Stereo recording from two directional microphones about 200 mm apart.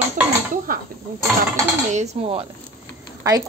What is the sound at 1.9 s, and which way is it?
Dishes, 30° right (ahead or behind).